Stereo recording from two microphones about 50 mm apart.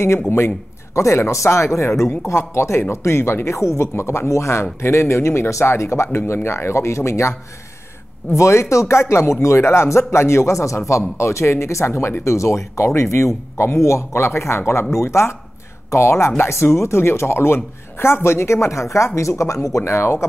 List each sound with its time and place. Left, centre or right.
0.9 s speech: left
6.1 s speech: left